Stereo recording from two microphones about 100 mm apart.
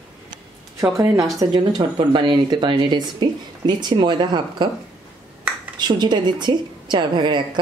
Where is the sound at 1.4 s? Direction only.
45° right (ahead or behind).